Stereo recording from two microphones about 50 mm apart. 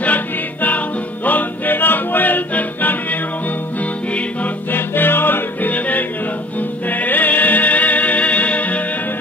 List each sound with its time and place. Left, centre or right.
0.0 s music: left
4.6 s music: left